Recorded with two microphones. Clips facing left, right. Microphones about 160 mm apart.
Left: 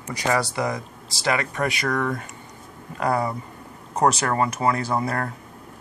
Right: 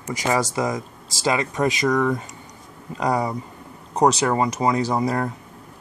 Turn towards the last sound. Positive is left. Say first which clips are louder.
# right 3 dB
turn(degrees=-15)  # may be behind; listen again after turning